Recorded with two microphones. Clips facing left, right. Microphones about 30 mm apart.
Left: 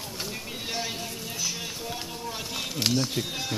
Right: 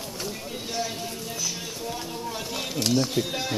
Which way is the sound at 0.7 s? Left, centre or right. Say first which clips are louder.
Right 2 dB; centre.